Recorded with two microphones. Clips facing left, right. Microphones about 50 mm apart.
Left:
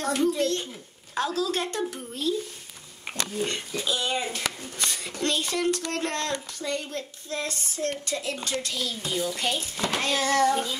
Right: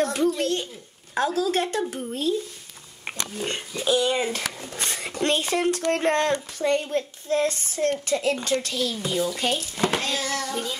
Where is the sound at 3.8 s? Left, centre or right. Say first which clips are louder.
Right 7 dB; right.